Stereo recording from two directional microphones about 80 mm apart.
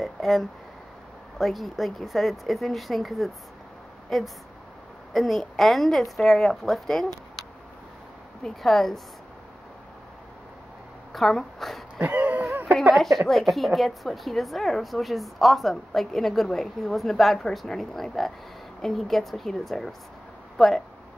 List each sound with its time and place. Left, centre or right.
0.0 s a woman's voice: centre
8.5 s a woman's voice: centre
11.1 s a woman's voice: centre
12.0 s a sound: centre
12.9 s a woman's voice: centre